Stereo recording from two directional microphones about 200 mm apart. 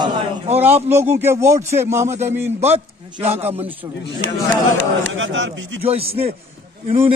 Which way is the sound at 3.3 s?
30° right (ahead or behind).